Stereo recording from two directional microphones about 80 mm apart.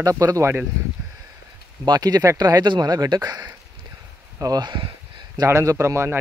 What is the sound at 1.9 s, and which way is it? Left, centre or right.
Speech, right.